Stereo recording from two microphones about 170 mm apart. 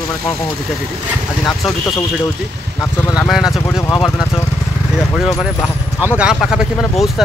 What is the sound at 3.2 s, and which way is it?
Speech, centre (ahead or behind).